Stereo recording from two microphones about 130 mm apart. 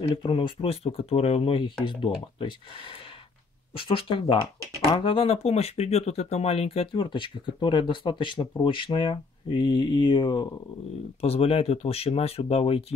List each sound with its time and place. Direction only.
0.1 s speech: 40° left (ahead or behind)
11.1 s speech: 50° left (ahead or behind)